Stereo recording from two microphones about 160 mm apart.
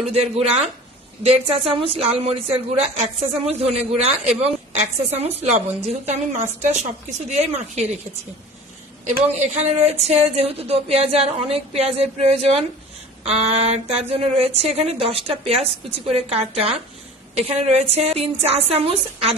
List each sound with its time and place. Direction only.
0.1 s a woman's voice: 40° right (ahead or behind)
9.0 s a woman's voice: 45° right (ahead or behind)